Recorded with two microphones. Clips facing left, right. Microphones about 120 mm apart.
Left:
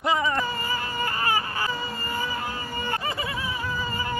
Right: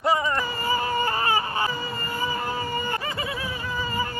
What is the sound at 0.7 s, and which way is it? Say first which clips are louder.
Baby cry: right 4 dB; 30° right (ahead or behind).